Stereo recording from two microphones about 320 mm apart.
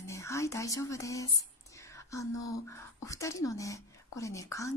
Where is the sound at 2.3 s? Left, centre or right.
Left.